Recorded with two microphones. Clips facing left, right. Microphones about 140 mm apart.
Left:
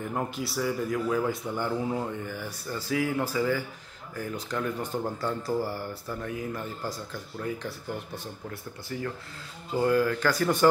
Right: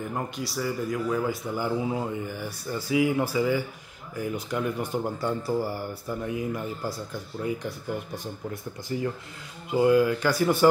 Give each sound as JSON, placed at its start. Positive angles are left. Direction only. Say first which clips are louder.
{"t": 0.1, "sound": "a man's voice", "louder": "even", "side_deg": 0}
{"t": 9.7, "sound": "a man's voice", "louder": "right 4 dB", "side_deg": -10}